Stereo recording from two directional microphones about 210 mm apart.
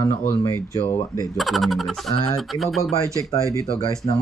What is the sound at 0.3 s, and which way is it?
Speech, 10° left (ahead or behind).